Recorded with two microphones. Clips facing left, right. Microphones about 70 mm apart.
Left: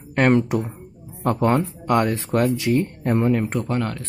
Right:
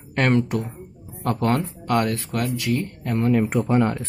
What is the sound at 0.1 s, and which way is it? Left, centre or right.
Speech, centre.